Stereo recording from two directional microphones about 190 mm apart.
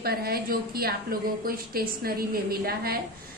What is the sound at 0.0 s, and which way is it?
A woman's voice, 55° right (ahead or behind).